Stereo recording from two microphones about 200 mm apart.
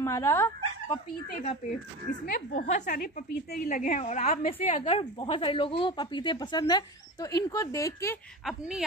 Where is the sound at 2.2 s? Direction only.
45° left (ahead or behind); by 8.1 s 15° left (ahead or behind).